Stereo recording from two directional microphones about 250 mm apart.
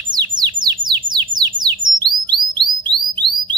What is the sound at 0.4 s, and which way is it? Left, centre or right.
Bird, centre.